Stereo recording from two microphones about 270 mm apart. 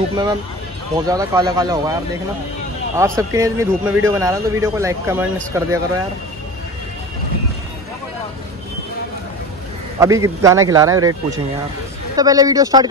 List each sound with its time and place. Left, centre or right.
0.1 s a man's voice: centre
3.0 s a man's voice: centre
9.9 s a man's voice: centre